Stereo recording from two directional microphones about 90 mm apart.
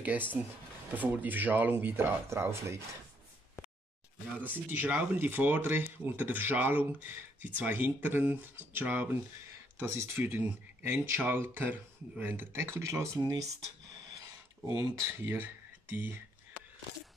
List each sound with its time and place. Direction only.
0.0 s speech: 20° right (ahead or behind)
4.5 s speech: 20° right (ahead or behind)